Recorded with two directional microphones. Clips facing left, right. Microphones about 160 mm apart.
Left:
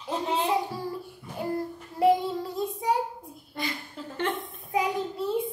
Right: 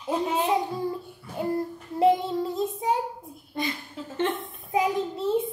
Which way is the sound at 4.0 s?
Centre (ahead or behind).